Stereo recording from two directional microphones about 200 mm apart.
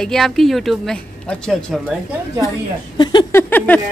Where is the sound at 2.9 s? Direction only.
20° left (ahead or behind).